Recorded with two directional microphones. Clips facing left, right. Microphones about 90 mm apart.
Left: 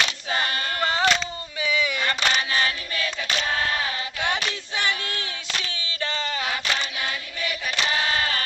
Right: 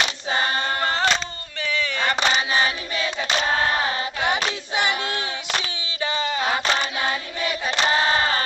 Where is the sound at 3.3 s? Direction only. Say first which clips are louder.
Right 4 dB; 35° right (ahead or behind).